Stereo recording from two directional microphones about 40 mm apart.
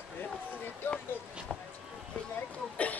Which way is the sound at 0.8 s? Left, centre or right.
Left.